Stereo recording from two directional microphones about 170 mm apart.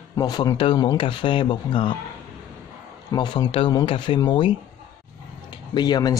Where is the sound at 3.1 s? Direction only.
25° left (ahead or behind).